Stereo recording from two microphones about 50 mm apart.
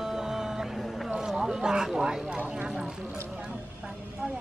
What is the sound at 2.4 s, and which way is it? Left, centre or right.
Clip-clop, right.